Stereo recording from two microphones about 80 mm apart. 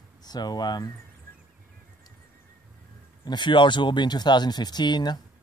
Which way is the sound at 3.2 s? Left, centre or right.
Left.